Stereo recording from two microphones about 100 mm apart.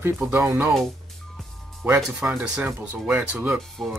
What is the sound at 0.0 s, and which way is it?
Speech, 15° right (ahead or behind).